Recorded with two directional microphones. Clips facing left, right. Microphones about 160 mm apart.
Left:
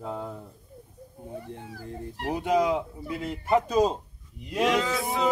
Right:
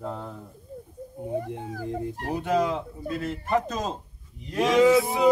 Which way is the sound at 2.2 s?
15° left (ahead or behind).